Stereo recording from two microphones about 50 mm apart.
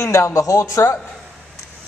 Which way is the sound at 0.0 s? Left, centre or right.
Left.